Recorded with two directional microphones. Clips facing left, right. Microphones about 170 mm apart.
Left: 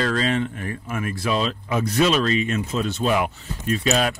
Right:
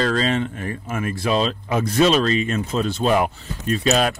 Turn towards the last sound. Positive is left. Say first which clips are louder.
# right 2 dB
turn(degrees=-40)  # may be behind; listen again after turning